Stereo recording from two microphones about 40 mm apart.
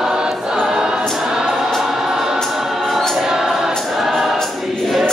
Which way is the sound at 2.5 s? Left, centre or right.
Centre.